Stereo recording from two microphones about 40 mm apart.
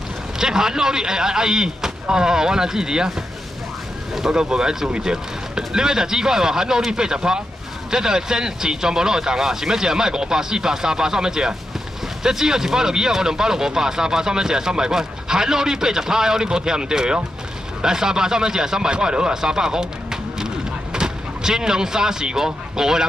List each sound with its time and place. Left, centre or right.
0.4 s speech: centre
4.3 s speech: centre